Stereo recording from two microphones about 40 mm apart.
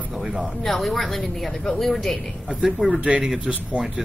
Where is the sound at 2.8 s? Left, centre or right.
Centre.